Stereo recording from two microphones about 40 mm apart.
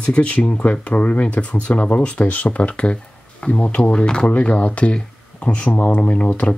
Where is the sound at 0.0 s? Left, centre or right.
Left.